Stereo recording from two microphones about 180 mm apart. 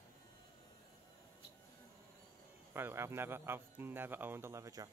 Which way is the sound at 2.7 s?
15° right (ahead or behind).